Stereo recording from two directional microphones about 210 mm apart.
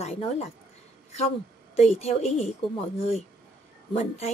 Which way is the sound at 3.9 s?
30° left (ahead or behind).